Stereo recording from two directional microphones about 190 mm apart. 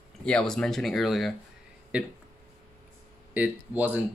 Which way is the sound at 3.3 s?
10° right (ahead or behind).